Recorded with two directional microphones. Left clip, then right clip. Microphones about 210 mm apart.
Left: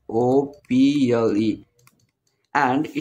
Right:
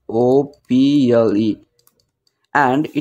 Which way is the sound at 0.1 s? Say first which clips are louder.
Right 5 dB; 25° right (ahead or behind).